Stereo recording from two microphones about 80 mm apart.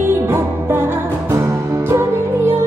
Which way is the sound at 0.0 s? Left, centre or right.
Right.